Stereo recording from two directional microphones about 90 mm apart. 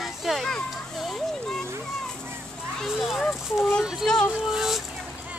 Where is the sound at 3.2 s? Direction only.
Centre (ahead or behind).